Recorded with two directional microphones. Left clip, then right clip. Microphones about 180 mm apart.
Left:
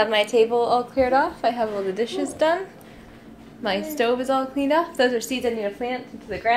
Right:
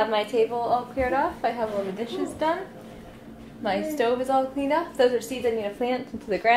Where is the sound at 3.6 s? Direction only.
25° left (ahead or behind).